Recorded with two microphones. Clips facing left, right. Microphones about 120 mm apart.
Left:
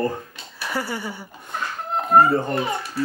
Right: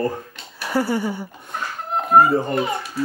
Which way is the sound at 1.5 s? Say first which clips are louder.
Even; centre (ahead or behind).